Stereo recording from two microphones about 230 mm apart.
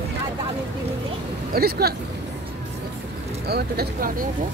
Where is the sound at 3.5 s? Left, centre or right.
Right.